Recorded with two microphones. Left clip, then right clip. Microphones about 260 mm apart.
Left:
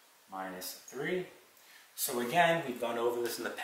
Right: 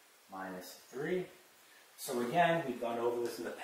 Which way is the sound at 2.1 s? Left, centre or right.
Centre.